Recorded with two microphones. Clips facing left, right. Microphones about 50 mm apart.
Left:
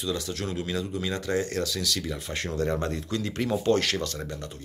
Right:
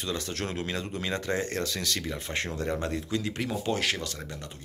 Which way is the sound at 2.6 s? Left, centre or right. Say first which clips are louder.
Left 3 dB; centre.